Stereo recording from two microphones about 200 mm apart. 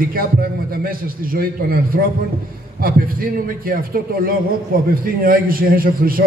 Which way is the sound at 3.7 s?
45° right (ahead or behind).